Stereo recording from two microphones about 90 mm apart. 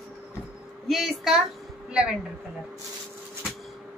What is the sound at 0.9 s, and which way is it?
Speech, centre (ahead or behind).